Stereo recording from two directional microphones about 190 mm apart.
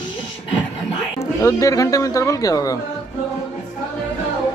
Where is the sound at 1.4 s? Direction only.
15° left (ahead or behind).